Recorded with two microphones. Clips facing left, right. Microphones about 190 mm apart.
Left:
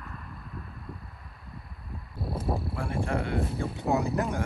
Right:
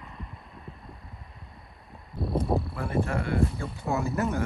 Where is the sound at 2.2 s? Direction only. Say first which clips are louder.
Right 3 dB; centre (ahead or behind).